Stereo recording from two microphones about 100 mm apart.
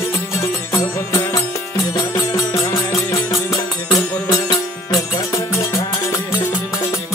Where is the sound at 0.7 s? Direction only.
35° left (ahead or behind).